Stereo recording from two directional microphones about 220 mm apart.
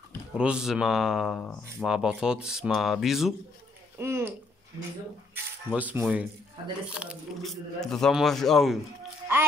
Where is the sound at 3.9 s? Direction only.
10° right (ahead or behind).